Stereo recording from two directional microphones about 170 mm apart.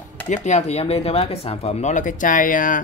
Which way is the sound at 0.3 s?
45° left (ahead or behind).